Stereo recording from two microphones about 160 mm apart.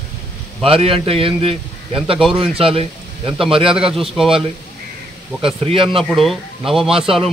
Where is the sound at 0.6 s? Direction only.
35° right (ahead or behind).